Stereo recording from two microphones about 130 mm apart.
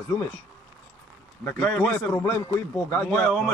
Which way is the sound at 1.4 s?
10° left (ahead or behind).